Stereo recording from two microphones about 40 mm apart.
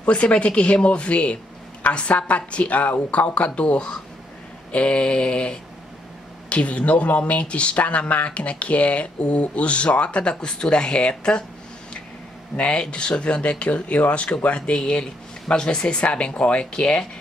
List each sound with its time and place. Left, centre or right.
0.0 s speech: left
12.5 s speech: left